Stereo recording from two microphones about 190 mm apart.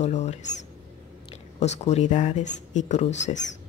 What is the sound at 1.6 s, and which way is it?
Speech, 35° left (ahead or behind).